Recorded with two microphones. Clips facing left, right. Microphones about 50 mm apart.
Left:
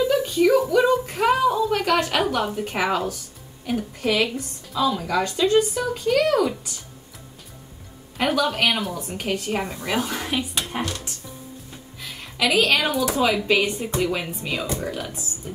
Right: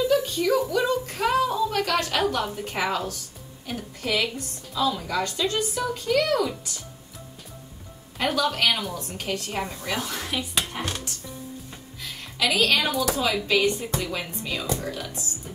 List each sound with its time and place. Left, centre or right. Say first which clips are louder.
0.1 s a sound: left 4 dB; centre
0.6 s a woman's voice: left 5 dB; centre
8.2 s a woman's voice: left 2 dB; centre
12.0 s a woman's voice: left 2 dB; centre